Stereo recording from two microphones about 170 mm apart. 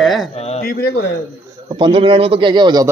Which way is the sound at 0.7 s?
70° left (ahead or behind).